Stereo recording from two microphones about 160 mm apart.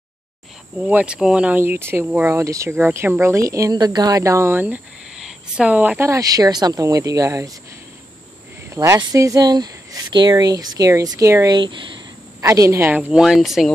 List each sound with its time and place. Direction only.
0.7 s speech: 10° right (ahead or behind)
8.6 s speech: 20° right (ahead or behind); by 13.7 s centre (ahead or behind)